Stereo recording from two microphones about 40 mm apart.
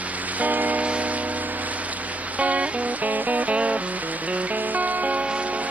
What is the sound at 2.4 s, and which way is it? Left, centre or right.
Music, right.